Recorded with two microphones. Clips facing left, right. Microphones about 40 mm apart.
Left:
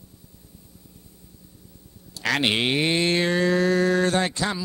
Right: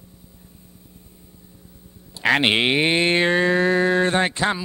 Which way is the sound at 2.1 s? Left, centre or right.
Right.